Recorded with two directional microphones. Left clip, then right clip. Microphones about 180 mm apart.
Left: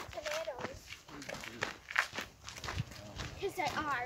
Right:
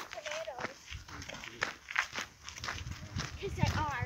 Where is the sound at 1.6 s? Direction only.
55° right (ahead or behind).